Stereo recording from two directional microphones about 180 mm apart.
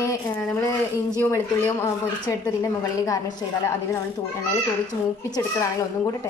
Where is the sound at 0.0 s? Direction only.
20° left (ahead or behind).